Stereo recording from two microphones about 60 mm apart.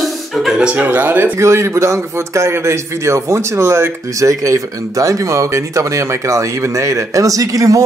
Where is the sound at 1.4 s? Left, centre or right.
Right.